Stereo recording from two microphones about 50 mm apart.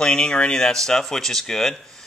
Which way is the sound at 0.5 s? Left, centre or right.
Centre.